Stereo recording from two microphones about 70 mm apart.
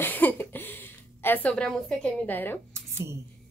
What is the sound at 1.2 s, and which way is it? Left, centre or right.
Speech, left.